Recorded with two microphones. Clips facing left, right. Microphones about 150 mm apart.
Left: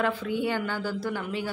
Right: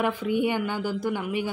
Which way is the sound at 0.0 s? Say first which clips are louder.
Right 3 dB; 15° right (ahead or behind).